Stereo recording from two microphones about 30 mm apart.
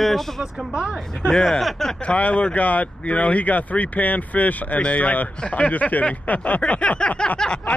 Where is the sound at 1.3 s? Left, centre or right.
Left.